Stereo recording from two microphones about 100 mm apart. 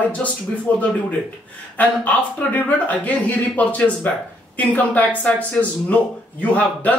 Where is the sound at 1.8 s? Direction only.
15° left (ahead or behind).